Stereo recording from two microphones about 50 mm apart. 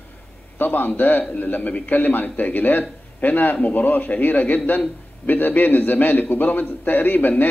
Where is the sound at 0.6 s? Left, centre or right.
Left.